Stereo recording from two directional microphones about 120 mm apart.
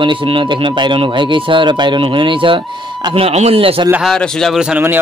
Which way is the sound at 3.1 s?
60° right (ahead or behind).